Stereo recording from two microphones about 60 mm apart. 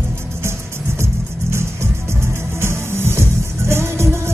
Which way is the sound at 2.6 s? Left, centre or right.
Right.